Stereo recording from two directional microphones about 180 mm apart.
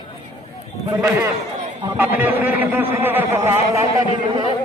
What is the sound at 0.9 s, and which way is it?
A man's voice, 10° right (ahead or behind).